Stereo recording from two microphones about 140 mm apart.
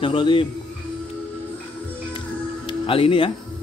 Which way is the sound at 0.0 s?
40° left (ahead or behind).